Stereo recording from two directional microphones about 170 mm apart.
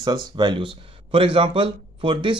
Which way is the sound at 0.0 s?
25° right (ahead or behind).